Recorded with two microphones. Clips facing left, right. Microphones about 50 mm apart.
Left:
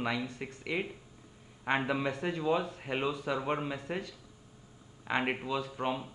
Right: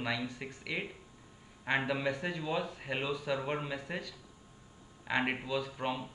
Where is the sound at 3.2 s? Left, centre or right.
Centre.